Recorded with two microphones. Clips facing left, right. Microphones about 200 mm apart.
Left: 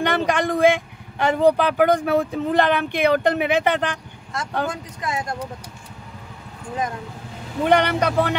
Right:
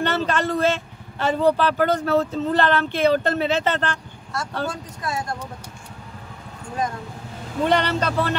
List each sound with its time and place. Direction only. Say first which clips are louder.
0.0 s a man's voice: left 2 dB; 15° left (ahead or behind)
7.6 s a man's voice: left 3 dB; 15° left (ahead or behind)